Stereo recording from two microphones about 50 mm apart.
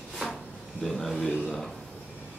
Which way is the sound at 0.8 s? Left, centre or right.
Centre.